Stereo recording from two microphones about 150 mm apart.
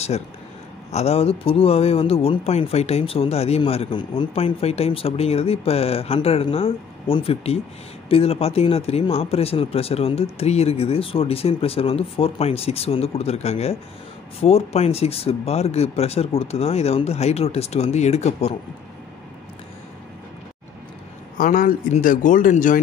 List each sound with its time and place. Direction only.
0.9 s speech: 40° left (ahead or behind)
21.4 s speech: 65° left (ahead or behind)